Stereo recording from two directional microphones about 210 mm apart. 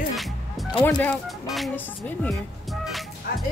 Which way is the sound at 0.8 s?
5° left (ahead or behind).